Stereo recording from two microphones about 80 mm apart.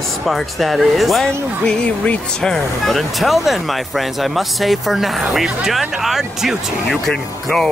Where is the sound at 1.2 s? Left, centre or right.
Centre.